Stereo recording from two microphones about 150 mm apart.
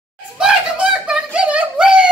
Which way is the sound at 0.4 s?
5° right (ahead or behind).